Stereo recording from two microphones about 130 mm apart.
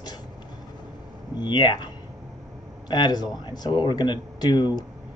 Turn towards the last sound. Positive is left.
turn(degrees=35)  # may be behind; listen again after turning